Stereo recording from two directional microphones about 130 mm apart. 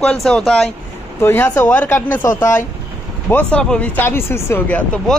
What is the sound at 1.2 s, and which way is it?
Speech, 15° left (ahead or behind).